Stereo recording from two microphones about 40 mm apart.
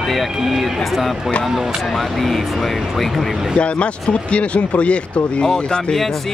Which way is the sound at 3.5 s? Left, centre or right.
Left.